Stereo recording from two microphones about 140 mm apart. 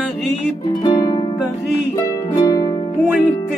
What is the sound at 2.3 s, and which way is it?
Harp, 25° left (ahead or behind).